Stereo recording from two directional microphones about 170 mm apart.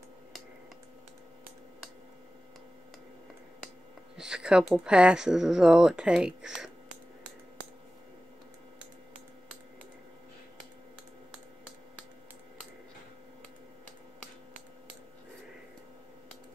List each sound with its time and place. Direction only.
4.2 s speech: 5° right (ahead or behind)